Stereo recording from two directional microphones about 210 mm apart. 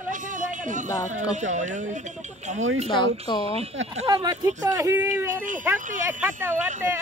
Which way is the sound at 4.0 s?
20° right (ahead or behind).